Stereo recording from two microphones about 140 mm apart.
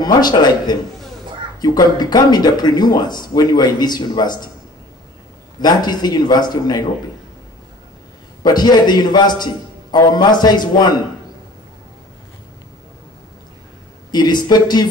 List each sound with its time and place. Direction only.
0.0 s speech: 30° left (ahead or behind)
5.6 s speech: 30° left (ahead or behind)
8.4 s a man's voice: 30° left (ahead or behind)
14.1 s speech: 30° left (ahead or behind)